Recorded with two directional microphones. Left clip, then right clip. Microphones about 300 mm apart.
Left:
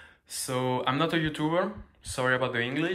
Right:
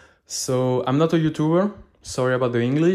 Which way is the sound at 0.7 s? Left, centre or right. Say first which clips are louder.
Right 4 dB; right.